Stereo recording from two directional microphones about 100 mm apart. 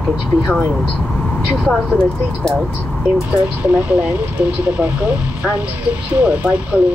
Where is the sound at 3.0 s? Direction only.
10° right (ahead or behind).